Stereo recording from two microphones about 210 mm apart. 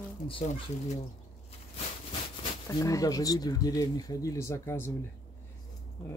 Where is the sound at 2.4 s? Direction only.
15° left (ahead or behind).